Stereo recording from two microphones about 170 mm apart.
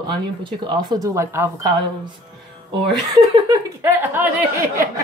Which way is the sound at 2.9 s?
20° right (ahead or behind).